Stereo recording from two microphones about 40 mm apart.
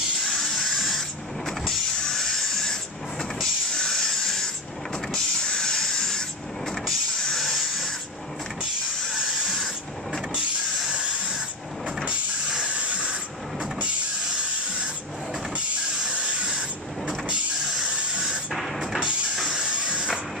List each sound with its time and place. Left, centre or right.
0.2 s vehicle: centre
2.0 s a sound: centre
5.1 s printer: centre
6.7 s vehicle: centre
9.2 s printer: centre
10.9 s a sound: right
12.1 s vehicle: right
15.5 s vehicle: right
17.6 s a sound: centre
18.5 s a sound: centre
18.9 s music: centre
19.5 s hiss: right